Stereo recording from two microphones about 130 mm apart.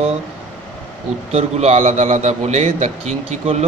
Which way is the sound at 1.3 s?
55° right (ahead or behind).